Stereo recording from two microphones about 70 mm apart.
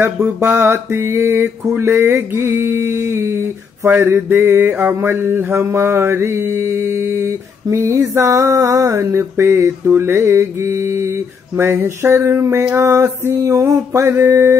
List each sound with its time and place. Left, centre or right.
0.2 s mantra: right
12.7 s a sound: right
13.2 s mantra: right
13.5 s mantra: right